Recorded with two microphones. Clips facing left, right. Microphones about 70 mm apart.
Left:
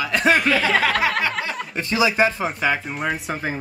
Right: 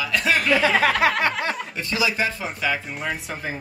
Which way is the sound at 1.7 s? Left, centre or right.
Left.